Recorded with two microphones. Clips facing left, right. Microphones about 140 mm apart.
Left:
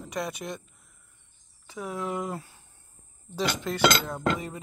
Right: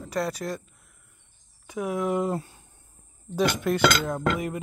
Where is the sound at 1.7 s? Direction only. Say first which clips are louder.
Right 6 dB; 10° right (ahead or behind).